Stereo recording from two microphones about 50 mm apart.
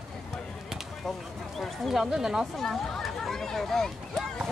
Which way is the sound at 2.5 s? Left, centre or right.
Centre.